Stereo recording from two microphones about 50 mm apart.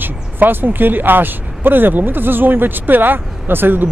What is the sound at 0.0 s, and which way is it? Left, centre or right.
Speech, right.